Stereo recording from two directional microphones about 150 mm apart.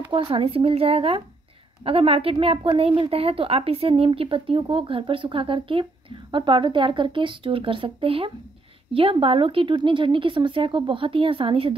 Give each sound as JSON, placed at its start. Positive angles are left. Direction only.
{"t": 0.1, "sound": "a woman's voice", "side_deg": -35}